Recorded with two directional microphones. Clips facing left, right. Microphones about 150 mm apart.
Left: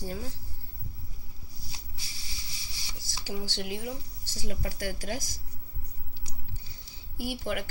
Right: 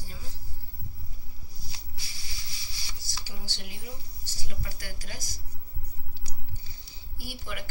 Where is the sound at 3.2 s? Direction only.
90° left.